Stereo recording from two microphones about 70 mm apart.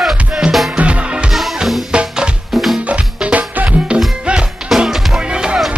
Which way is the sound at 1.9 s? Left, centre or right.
Centre.